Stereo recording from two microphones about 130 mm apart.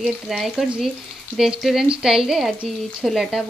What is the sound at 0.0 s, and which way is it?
Speech, 5° right (ahead or behind).